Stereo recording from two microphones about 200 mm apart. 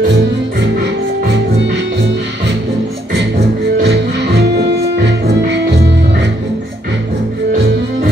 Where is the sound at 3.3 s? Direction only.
55° right (ahead or behind).